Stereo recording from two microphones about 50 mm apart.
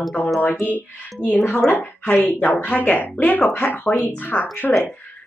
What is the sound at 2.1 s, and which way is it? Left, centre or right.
Speech, left.